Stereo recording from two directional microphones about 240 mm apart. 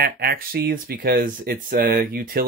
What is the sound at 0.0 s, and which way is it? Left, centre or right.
Speech, right.